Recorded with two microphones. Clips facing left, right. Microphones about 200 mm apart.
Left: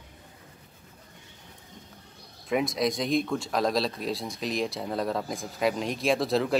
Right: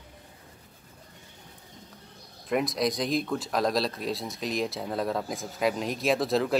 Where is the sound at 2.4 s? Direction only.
Centre (ahead or behind).